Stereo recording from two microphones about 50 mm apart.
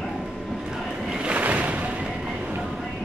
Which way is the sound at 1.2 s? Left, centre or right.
Right.